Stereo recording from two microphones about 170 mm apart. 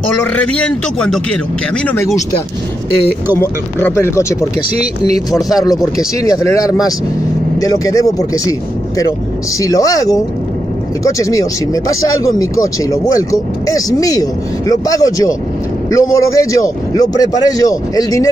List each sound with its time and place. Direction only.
0.2 s a man's voice: 10° left (ahead or behind)
3.3 s a man's voice: 15° left (ahead or behind)
6.4 s speech: 20° left (ahead or behind)